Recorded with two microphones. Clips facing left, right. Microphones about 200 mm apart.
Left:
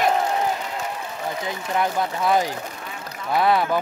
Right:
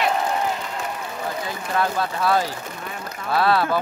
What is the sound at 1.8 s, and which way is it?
Speech, 20° left (ahead or behind).